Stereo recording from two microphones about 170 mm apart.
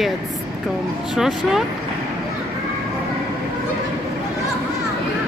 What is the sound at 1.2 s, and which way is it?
Speech, centre (ahead or behind).